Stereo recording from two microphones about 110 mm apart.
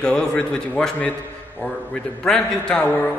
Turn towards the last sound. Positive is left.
turn(degrees=10)  # may be behind; listen again after turning